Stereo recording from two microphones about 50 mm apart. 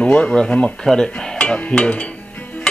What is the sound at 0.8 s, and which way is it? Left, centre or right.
Dishes, centre.